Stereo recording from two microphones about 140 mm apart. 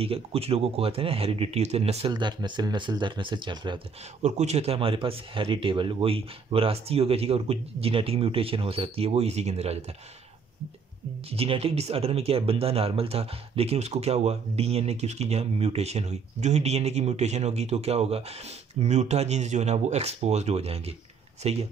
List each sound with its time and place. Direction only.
0.0 s speech: 45° right (ahead or behind)
2.1 s speech: 35° right (ahead or behind)
4.2 s speech: 55° right (ahead or behind)
11.2 s speech: 45° right (ahead or behind)